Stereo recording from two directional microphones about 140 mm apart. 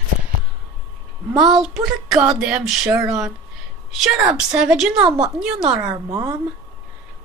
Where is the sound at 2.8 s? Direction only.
20° right (ahead or behind).